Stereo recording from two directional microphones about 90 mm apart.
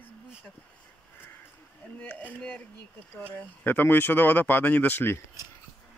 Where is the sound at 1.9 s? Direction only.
15° left (ahead or behind).